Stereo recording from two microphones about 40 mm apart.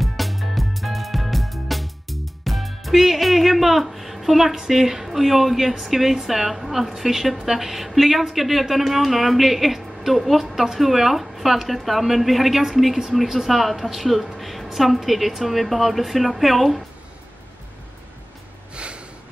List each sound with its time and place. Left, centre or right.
0.0 s music: centre
6.1 s a woman's voice: centre
18.8 s snort: right